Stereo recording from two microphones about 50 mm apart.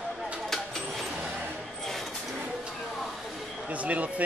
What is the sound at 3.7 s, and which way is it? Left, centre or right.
Speech, right.